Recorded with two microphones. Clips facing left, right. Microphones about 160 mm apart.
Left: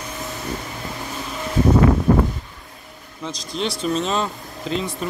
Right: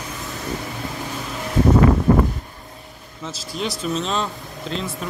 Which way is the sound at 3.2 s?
5° right (ahead or behind).